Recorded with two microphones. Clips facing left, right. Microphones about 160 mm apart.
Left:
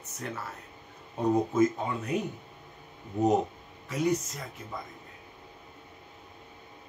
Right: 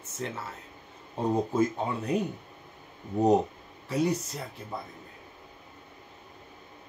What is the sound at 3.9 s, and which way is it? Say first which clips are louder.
Speech: right 1 dB; 35° right (ahead or behind).